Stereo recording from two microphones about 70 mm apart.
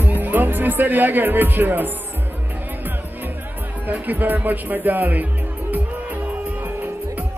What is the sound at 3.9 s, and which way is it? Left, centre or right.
Speech, right.